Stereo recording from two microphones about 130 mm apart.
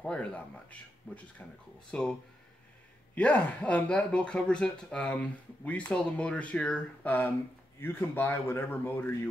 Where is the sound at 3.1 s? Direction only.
10° left (ahead or behind).